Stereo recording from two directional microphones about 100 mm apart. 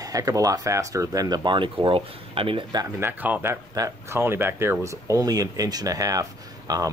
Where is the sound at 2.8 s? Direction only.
25° right (ahead or behind).